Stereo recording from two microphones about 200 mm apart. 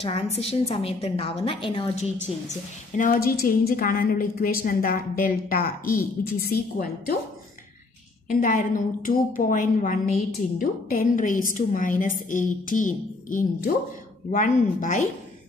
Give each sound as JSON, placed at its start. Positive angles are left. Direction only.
{"t": 0.4, "sound": "a woman's voice", "side_deg": 30}
{"t": 3.0, "sound": "a woman's voice", "side_deg": 45}
{"t": 8.3, "sound": "a woman's voice", "side_deg": 40}